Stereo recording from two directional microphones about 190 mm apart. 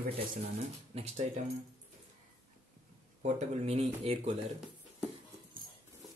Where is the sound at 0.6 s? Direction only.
35° right (ahead or behind).